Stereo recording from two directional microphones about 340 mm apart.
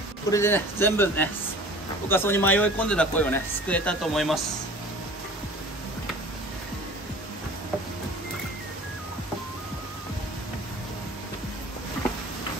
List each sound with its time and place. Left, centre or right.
0.3 s a man's voice: centre